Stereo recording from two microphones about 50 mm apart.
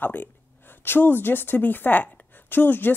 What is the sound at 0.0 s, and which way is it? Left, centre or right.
Speech, left.